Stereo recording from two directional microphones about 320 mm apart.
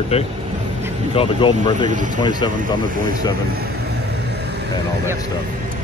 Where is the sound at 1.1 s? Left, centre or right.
Centre.